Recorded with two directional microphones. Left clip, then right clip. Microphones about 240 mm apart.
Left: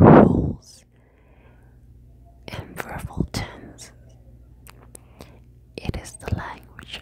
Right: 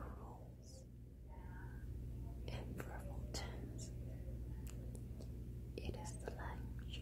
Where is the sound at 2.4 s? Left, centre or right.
Left.